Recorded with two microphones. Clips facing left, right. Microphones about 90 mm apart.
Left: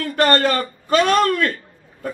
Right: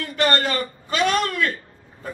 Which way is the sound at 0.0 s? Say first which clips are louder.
Left 4 dB; 45° left (ahead or behind).